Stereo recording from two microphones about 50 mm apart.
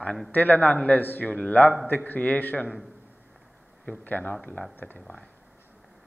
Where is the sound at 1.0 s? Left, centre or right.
Left.